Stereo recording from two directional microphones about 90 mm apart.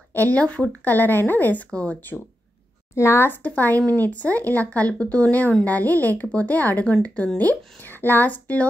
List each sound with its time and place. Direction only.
0.1 s speech: 20° left (ahead or behind)
2.9 s speech: 30° left (ahead or behind)
3.7 s speech: 40° right (ahead or behind)
4.1 s a woman's voice: 15° left (ahead or behind)